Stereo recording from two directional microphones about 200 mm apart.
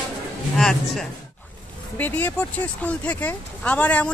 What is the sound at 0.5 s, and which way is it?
Speech, centre (ahead or behind).